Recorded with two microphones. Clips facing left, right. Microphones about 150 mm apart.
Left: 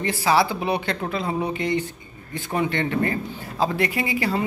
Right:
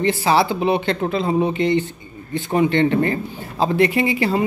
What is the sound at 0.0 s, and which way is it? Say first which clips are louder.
A man's voice: right 3 dB; 25° right (ahead or behind).